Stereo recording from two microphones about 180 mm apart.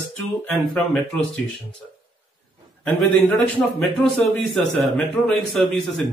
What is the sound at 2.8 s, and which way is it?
Speech, 5° left (ahead or behind).